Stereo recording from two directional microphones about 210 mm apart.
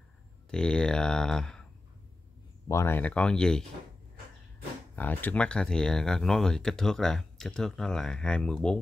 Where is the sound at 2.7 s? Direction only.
10° left (ahead or behind).